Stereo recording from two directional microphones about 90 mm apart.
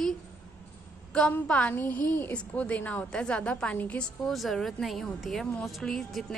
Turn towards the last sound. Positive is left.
turn(degrees=5)  # may be behind; listen again after turning